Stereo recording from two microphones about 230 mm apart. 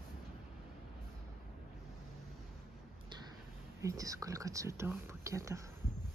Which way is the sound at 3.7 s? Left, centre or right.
Centre.